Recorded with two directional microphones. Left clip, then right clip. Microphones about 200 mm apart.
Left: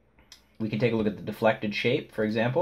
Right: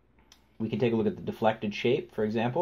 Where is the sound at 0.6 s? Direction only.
35° right (ahead or behind).